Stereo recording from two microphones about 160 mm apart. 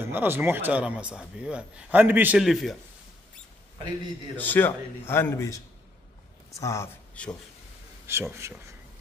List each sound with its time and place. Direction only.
0.1 s a man's voice: 15° right (ahead or behind)
2.4 s speech: centre (ahead or behind)
4.4 s a man's voice: 10° left (ahead or behind)
7.2 s a man's voice: 5° left (ahead or behind)
8.1 s a man's voice: 15° right (ahead or behind)